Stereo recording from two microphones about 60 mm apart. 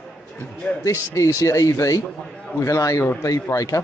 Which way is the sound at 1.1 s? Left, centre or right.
Left.